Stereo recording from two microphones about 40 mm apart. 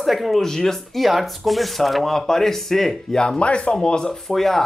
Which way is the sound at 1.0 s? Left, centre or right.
Centre.